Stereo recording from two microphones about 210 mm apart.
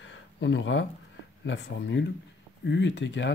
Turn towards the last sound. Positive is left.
turn(degrees=60)  # may be behind; listen again after turning